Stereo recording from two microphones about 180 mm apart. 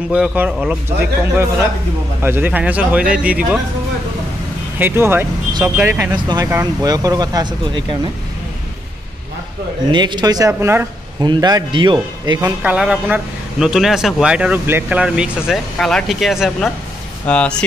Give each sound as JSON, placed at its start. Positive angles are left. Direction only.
{"t": 0.1, "sound": "a man's voice", "side_deg": -5}
{"t": 4.7, "sound": "a man's voice", "side_deg": -10}
{"t": 9.8, "sound": "speech", "side_deg": -25}
{"t": 12.6, "sound": "speech", "side_deg": -5}